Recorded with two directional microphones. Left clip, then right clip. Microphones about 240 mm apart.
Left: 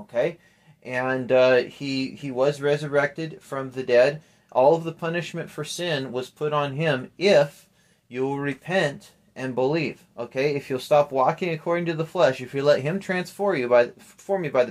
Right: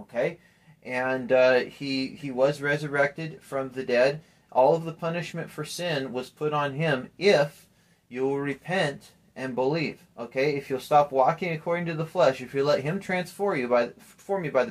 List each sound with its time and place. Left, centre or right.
0.8 s speech: left